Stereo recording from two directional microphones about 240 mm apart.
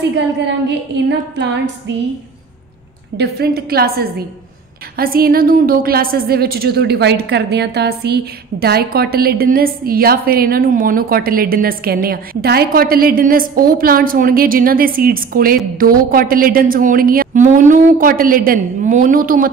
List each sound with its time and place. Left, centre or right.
0.1 s a woman's voice: right
3.2 s a woman's voice: right